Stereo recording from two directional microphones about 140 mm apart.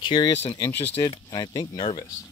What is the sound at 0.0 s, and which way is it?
Speech, 35° left (ahead or behind).